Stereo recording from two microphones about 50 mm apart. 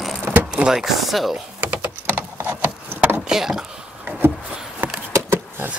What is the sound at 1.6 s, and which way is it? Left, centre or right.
Typing, right.